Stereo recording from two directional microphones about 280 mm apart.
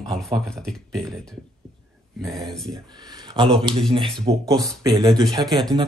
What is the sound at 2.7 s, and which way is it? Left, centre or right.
Speech, centre.